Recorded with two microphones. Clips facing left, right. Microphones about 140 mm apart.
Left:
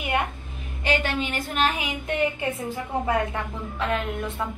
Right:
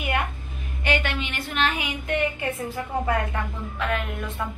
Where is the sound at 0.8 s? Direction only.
40° left (ahead or behind).